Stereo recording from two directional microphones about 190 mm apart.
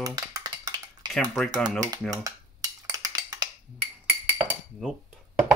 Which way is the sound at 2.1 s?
15° right (ahead or behind).